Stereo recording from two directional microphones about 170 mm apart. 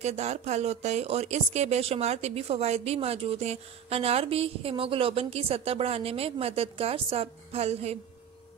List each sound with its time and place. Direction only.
0.0 s speech: 40° right (ahead or behind)